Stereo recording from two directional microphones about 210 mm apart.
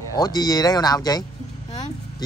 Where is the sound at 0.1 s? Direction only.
20° left (ahead or behind).